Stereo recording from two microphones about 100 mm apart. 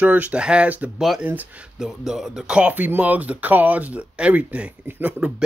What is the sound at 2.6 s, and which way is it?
Speech, 15° right (ahead or behind).